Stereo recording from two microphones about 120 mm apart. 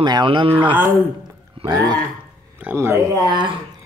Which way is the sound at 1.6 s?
50° right (ahead or behind).